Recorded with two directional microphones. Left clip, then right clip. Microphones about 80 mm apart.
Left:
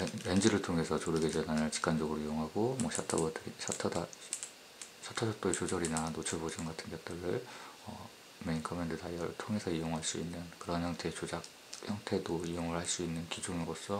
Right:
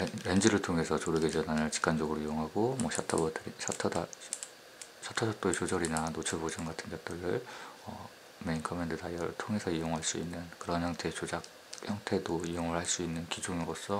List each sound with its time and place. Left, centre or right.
0.0 s speech: right
8.5 s speech: right